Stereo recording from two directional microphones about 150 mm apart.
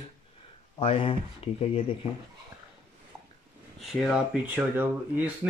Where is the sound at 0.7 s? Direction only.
35° left (ahead or behind).